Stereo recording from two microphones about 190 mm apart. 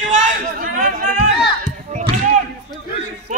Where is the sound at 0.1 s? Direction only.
45° right (ahead or behind).